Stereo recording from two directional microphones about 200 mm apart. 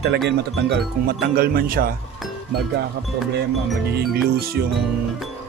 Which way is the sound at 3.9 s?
50° right (ahead or behind).